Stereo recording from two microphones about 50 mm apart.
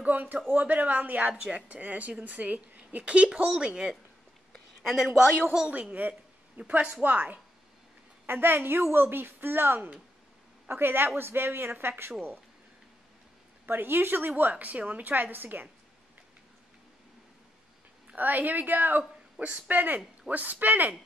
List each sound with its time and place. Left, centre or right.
0.0 s a woman's voice: right
5.9 s a sound: right
7.0 s a woman's voice: right
13.7 s speech: right
14.5 s a woman's voice: right
18.1 s a woman's voice: right
19.3 s speech: centre
19.7 s a woman's voice: right